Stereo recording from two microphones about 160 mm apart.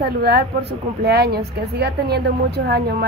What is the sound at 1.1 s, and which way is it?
A woman's voice, 85° right.